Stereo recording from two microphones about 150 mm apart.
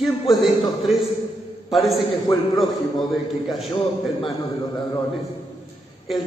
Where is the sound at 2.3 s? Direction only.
30° left (ahead or behind).